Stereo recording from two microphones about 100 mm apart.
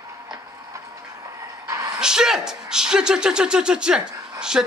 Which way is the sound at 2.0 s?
5° right (ahead or behind).